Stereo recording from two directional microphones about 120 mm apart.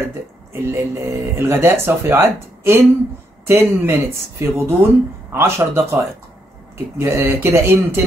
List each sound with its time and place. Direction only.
0.0 s speech: 20° right (ahead or behind)